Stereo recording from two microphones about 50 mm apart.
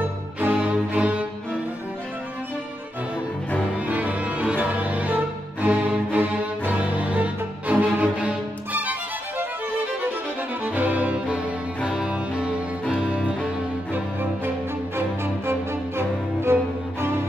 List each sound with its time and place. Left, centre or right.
0.6 s music: right
3.8 s music: right
10.6 s music: right
11.8 s music: right
16.0 s music: right